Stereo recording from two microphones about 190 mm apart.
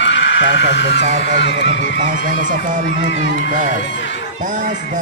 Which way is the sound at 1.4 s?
70° left (ahead or behind).